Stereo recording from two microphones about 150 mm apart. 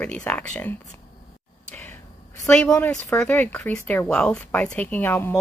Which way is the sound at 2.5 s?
5° left (ahead or behind).